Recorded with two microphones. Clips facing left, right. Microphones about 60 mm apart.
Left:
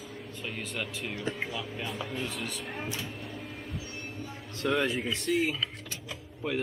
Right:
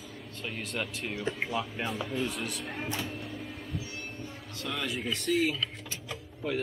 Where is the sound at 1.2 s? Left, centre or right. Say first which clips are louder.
Right 3 dB; centre.